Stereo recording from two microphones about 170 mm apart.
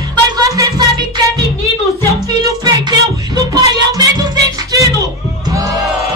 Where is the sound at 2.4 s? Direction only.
25° right (ahead or behind).